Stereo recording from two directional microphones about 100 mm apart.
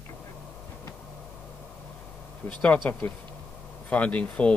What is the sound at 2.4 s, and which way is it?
Speech, 15° left (ahead or behind).